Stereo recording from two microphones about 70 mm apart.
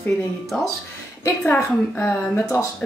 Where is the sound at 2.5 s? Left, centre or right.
Left.